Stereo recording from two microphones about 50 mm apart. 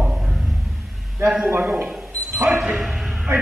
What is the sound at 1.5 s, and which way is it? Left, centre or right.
Speech, right.